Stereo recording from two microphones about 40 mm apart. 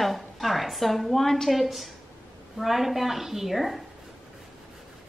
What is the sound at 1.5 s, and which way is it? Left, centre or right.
A woman's voice, centre.